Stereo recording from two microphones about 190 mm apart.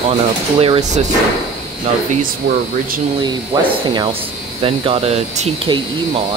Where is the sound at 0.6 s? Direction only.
35° right (ahead or behind).